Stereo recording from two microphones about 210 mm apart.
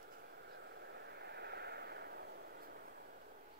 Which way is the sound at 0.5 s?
55° right (ahead or behind).